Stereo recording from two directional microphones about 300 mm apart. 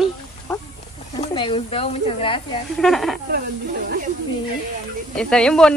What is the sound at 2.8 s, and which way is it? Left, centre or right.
Speech, centre.